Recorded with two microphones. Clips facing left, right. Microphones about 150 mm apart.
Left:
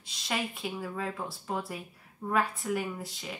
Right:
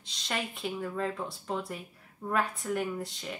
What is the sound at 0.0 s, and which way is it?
Speech, 5° left (ahead or behind).